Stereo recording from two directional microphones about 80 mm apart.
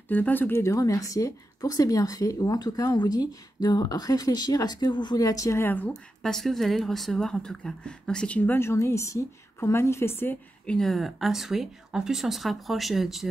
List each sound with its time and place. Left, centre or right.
0.1 s speech: left
0.7 s speech: left
5.2 s speech: left
5.6 s speech: left
5.9 s speech: centre
8.4 s a woman's voice: left
10.7 s speech: centre